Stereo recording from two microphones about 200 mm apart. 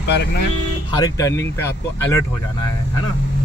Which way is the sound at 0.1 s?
55° left (ahead or behind).